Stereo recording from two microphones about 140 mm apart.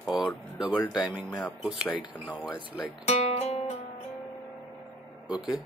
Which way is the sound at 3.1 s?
50° left (ahead or behind).